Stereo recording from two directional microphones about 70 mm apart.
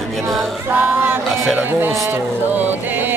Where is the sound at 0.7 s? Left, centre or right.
Right.